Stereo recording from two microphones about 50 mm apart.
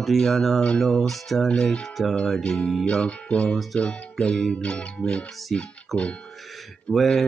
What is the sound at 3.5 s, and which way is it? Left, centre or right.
Speech, centre.